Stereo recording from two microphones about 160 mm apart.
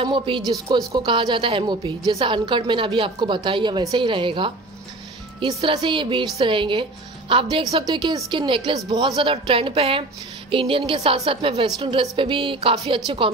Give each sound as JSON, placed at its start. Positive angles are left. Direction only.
{"t": 0.0, "sound": "a woman's voice", "side_deg": -30}